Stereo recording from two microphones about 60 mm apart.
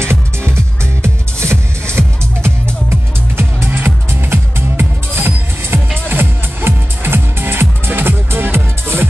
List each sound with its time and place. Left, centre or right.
0.0 s music: right